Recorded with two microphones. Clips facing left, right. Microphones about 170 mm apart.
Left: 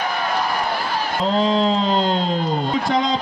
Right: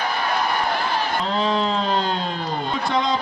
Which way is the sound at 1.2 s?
30° left (ahead or behind).